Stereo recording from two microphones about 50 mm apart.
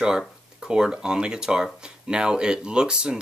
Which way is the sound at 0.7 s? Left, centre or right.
Centre.